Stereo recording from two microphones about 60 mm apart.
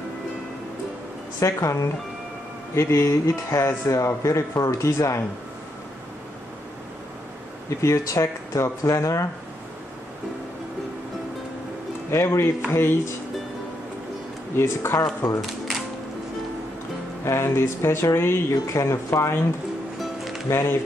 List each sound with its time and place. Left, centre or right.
1.4 s speech: left
7.8 s speech: left
12.1 s speech: left
14.6 s speech: left
15.4 s music: centre
17.2 s speech: left
18.5 s speech: left
19.0 s speech: left
20.0 s music: centre
20.4 s speech: left